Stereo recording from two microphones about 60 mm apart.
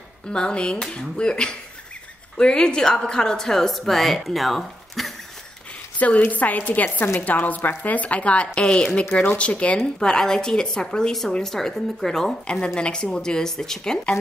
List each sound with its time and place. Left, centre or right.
0.3 s a woman's voice: centre
5.9 s a woman's voice: left
9.1 s a woman's voice: left